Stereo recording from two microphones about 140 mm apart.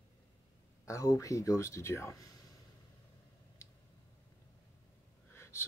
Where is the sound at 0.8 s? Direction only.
20° left (ahead or behind).